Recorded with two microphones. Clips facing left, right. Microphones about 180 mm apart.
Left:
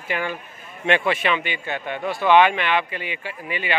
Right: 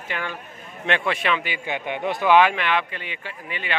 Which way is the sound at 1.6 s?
15° right (ahead or behind).